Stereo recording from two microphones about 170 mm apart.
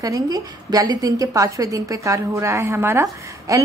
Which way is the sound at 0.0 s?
20° right (ahead or behind).